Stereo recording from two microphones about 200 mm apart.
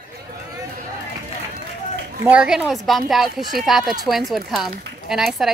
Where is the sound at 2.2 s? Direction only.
5° right (ahead or behind).